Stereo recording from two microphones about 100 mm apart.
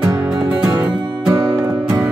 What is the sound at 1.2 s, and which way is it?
Music, 30° right (ahead or behind).